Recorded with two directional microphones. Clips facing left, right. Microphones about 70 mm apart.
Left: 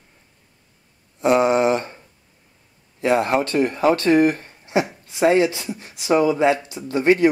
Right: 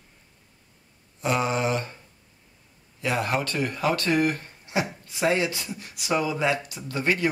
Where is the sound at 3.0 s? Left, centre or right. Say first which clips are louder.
Left 8 dB; left.